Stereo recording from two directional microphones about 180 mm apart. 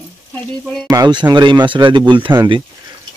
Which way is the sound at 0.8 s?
20° right (ahead or behind).